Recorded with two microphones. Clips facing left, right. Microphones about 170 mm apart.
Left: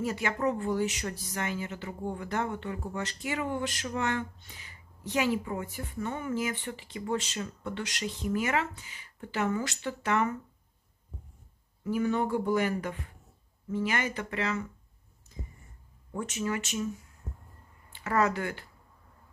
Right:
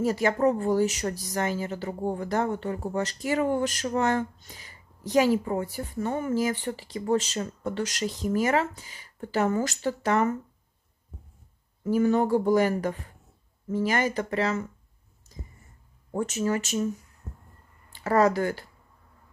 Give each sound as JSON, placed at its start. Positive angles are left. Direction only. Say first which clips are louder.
{"t": 0.0, "sound": "speech", "louder": "right 7 dB", "side_deg": -40}
{"t": 11.8, "sound": "speech", "louder": "right 6 dB", "side_deg": -40}
{"t": 15.3, "sound": "a sound", "louder": "even", "side_deg": -35}
{"t": 16.1, "sound": "speech", "louder": "right 6 dB", "side_deg": -40}
{"t": 18.0, "sound": "speech", "louder": "right 6 dB", "side_deg": -35}